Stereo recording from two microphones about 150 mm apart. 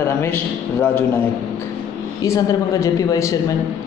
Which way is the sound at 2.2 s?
20° left (ahead or behind).